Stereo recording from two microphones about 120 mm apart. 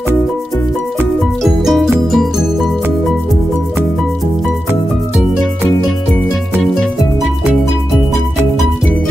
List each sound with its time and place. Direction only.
1.4 s music: centre (ahead or behind)